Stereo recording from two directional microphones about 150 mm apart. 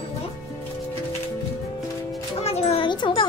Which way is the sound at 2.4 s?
40° left (ahead or behind).